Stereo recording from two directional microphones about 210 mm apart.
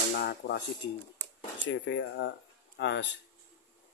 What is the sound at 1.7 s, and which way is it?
Speech, 65° left (ahead or behind).